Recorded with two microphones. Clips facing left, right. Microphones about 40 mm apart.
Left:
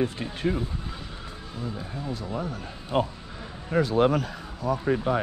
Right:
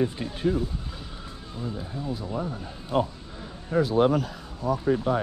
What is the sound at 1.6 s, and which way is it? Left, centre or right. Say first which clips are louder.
Speech: right 1 dB; centre.